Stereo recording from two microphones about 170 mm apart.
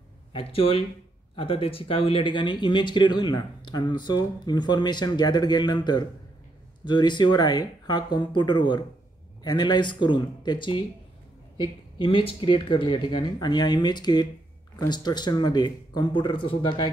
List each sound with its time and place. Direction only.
0.3 s speech: 35° left (ahead or behind)